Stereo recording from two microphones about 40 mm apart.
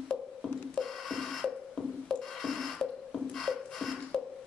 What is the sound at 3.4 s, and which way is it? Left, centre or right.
Beatboxing, centre.